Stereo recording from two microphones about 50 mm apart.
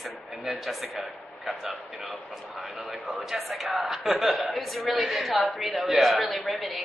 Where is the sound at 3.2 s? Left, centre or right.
Centre.